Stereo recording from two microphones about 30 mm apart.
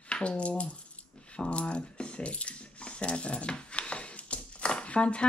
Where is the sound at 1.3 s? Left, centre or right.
Left.